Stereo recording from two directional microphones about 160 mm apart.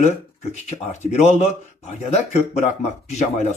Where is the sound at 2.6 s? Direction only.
45° left (ahead or behind).